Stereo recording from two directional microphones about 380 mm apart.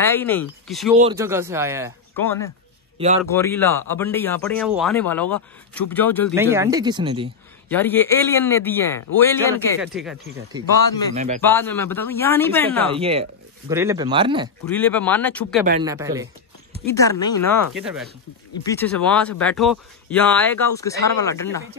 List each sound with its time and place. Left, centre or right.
0.0 s speech: centre
2.1 s speech: centre
6.3 s speech: centre
7.7 s speech: centre
11.1 s speech: centre
11.4 s speech: centre
12.9 s speech: centre
14.7 s speech: centre
15.8 s speech: centre
16.8 s speech: centre